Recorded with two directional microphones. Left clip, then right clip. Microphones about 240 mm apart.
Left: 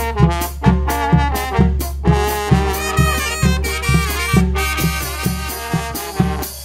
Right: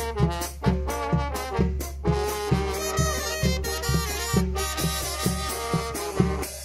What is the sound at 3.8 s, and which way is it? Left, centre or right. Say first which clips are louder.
Music: left 9 dB; left.